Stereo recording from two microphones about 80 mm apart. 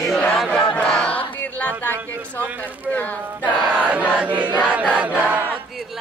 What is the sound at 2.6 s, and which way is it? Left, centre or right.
Speech, left.